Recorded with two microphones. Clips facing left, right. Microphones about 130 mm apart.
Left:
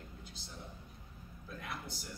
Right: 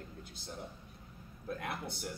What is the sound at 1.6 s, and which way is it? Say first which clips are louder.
Speech: right 4 dB; 60° right (ahead or behind).